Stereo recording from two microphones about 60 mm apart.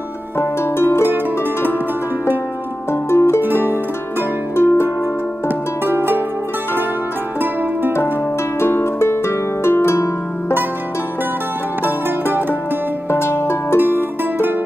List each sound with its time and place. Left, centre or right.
0.4 s harp: left
2.9 s harp: left
4.6 s music: left
5.9 s pizzicato: right
8.5 s harp: left
11.8 s music: right
13.1 s harp: left
13.7 s music: right